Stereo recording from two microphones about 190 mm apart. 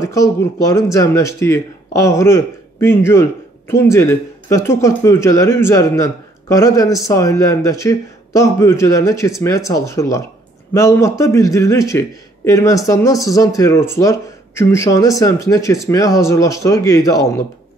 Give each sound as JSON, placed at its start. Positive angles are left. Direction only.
{"t": 0.0, "sound": "speech", "side_deg": 15}